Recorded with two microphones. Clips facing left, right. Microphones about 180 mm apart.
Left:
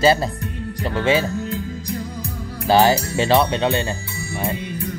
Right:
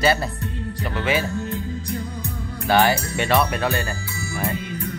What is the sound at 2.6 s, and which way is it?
Speech, 30° left (ahead or behind).